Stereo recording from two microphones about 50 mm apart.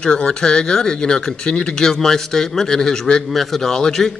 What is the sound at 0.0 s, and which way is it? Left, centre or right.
Speech, centre.